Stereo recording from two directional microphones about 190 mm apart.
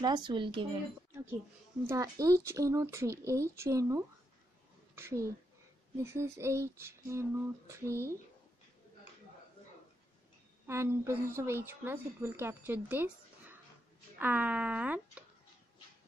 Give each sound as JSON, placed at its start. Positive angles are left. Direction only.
{"t": 0.0, "sound": "speech", "side_deg": -25}
{"t": 1.9, "sound": "a woman's voice", "side_deg": -15}
{"t": 10.7, "sound": "a woman's voice", "side_deg": -15}